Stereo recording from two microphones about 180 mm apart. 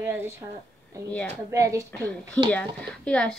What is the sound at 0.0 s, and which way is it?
Speech, 10° right (ahead or behind).